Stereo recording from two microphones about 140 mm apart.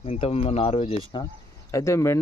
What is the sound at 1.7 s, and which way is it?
Speech, 20° left (ahead or behind).